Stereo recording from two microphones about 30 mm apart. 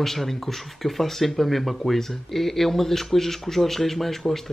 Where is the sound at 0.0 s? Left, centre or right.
Centre.